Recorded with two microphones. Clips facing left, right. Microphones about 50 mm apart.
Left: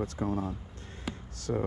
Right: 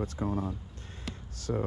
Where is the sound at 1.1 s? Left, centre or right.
Centre.